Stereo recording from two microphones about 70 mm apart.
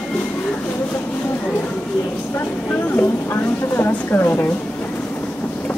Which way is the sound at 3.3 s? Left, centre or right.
Left.